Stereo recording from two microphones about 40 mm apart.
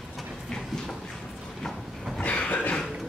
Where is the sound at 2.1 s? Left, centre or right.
Left.